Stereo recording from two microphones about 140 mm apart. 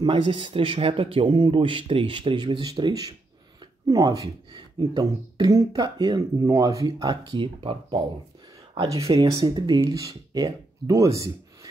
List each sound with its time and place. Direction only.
0.0 s speech: 35° right (ahead or behind)
3.8 s speech: 25° right (ahead or behind)